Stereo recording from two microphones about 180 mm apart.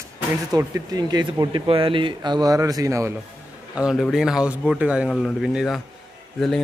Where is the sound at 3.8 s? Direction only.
Centre (ahead or behind).